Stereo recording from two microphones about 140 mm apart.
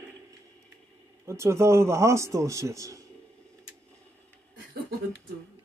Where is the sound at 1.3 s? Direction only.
20° right (ahead or behind).